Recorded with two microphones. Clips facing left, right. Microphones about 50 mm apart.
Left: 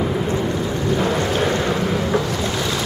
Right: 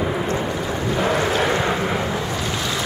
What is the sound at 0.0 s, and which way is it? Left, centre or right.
Boat, centre.